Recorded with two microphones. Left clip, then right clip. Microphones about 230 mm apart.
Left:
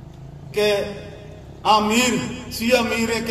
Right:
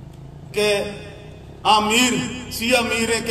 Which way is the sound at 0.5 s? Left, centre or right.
Right.